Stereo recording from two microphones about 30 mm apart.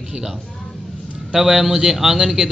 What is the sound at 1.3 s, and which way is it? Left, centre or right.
A man's voice, centre.